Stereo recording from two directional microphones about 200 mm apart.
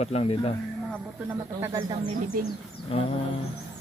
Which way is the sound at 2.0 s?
40° right (ahead or behind).